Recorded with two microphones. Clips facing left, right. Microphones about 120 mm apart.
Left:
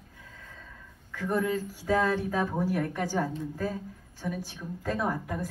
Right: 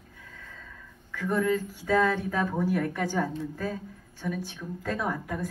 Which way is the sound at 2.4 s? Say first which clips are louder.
Right 1 dB; 25° left (ahead or behind).